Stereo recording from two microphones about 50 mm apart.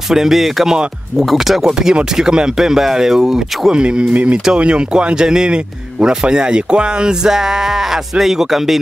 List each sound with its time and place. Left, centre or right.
0.1 s speech: centre